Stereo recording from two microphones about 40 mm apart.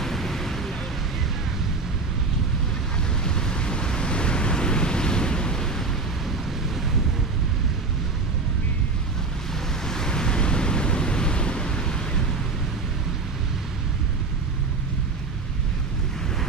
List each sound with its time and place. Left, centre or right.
0.0 s a sound: centre
3.3 s waves: centre
9.8 s waves: centre